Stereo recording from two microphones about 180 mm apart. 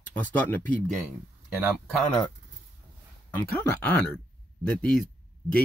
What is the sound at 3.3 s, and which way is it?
Speech, 10° left (ahead or behind).